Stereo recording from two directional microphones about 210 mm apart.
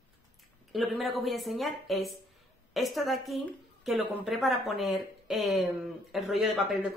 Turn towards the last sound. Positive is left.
turn(degrees=0)  # may be behind; listen again after turning